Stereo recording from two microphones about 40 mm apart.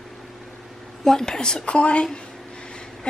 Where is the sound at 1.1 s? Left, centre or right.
Centre.